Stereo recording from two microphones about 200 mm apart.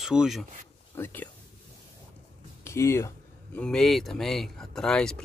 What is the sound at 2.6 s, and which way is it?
Speech, 15° left (ahead or behind).